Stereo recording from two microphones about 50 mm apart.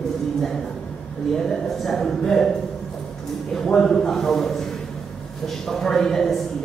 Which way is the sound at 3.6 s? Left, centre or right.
Centre.